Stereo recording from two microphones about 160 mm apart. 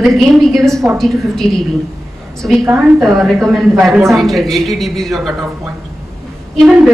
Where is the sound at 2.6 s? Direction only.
15° right (ahead or behind).